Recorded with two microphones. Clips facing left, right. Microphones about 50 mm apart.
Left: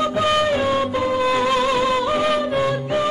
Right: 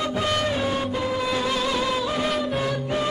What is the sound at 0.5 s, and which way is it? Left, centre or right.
Music, left.